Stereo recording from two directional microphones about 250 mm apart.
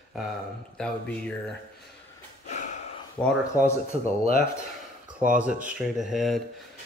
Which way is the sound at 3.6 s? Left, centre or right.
Centre.